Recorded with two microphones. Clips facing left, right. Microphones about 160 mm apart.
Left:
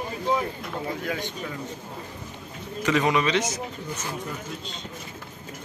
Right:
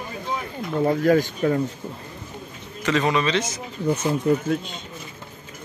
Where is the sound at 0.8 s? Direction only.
45° right (ahead or behind).